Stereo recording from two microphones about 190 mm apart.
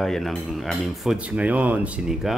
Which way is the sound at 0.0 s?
Centre (ahead or behind).